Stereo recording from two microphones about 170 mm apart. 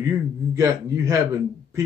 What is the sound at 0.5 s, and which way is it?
Speech, 20° right (ahead or behind).